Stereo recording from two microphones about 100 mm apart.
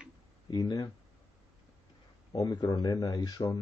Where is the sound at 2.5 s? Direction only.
45° left (ahead or behind).